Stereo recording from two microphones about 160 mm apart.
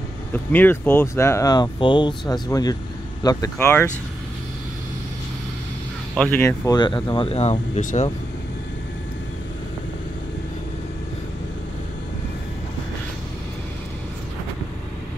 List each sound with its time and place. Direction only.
0.3 s speech: 10° left (ahead or behind)
6.1 s speech: 10° left (ahead or behind)
6.8 s speech: 30° left (ahead or behind); by 8.1 s 45° left (ahead or behind)